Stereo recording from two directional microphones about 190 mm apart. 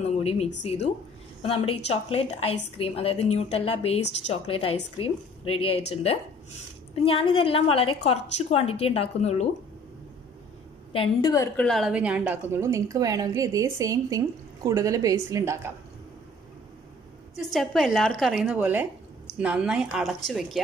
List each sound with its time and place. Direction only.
0.0 s a woman's voice: 35° left (ahead or behind)
10.9 s a woman's voice: 30° left (ahead or behind)
11.5 s a woman's voice: centre (ahead or behind); by 15.7 s 15° right (ahead or behind)
17.5 s a woman's voice: centre (ahead or behind)